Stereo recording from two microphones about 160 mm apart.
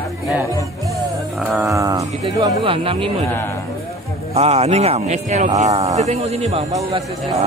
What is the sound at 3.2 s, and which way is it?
Speech, 15° left (ahead or behind).